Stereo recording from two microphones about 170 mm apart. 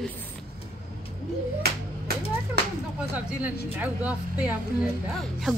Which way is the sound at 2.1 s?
65° right (ahead or behind).